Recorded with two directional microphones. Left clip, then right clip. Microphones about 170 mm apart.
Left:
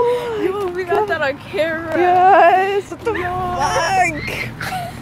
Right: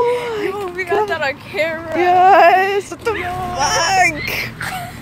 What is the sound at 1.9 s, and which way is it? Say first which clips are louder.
A child's voice: right 1 dB; centre (ahead or behind).